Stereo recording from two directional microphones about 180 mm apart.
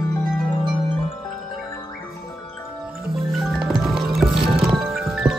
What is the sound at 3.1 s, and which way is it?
Music, centre (ahead or behind).